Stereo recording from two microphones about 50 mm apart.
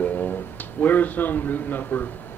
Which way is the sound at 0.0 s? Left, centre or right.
Left.